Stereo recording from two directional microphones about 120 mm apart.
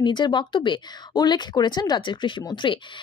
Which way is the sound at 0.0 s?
40° left (ahead or behind).